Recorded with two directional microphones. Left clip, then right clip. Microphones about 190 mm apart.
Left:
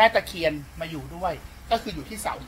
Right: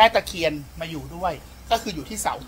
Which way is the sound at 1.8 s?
15° right (ahead or behind).